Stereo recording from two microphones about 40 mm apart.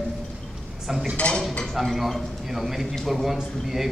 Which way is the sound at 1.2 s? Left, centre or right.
Left.